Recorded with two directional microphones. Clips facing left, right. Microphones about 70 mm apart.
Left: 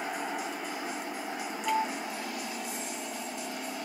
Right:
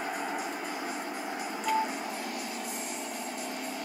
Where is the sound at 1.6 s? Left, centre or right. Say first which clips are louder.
Even; centre.